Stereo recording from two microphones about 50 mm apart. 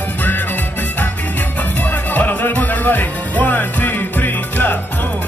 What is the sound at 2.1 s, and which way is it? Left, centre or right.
Music, left.